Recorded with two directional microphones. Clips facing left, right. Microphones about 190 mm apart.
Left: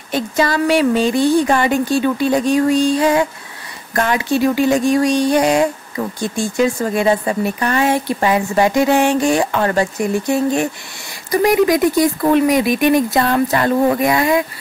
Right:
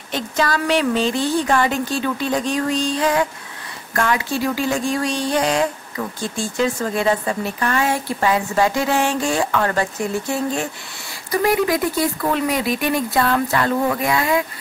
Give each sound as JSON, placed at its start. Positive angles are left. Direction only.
{"t": 0.1, "sound": "speech", "side_deg": 10}
{"t": 13.3, "sound": "speech", "side_deg": 25}